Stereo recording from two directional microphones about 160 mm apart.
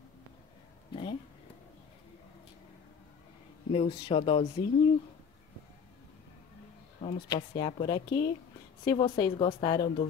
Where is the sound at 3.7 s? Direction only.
35° left (ahead or behind).